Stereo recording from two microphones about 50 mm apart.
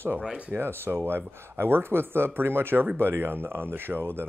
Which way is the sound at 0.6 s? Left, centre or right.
Right.